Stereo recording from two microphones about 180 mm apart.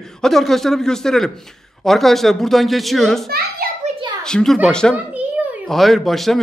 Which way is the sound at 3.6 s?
55° right (ahead or behind).